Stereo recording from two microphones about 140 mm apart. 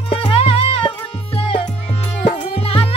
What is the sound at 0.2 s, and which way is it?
Music, 40° left (ahead or behind).